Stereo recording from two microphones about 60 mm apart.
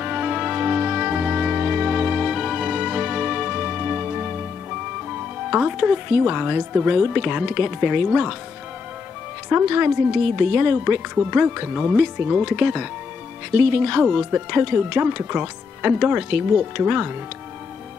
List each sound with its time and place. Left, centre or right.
0.0 s music: centre
5.5 s speech: centre
9.5 s speech: right